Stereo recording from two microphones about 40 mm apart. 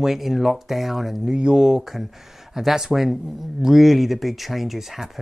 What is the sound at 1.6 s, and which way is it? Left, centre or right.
Speech, centre.